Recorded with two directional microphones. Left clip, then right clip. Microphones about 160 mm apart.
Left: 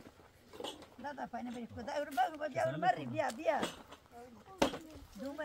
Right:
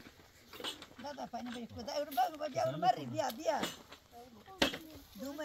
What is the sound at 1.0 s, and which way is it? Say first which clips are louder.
Speech: left 1 dB; 90° right.